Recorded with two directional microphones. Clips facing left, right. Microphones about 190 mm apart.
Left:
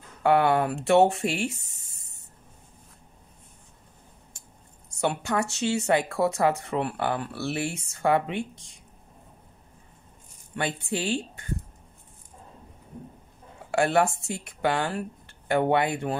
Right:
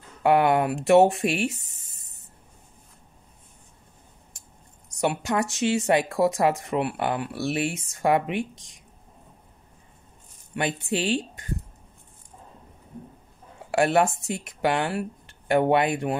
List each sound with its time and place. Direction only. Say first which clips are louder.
0.2 s speech: right 1 dB; 20° right (ahead or behind)
4.8 s speech: right 2 dB; 15° right (ahead or behind)
10.5 s speech: right 3 dB; 20° right (ahead or behind)
13.7 s speech: right 2 dB; 20° right (ahead or behind)